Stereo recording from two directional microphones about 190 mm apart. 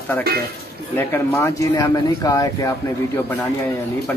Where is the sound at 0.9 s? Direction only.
15° left (ahead or behind).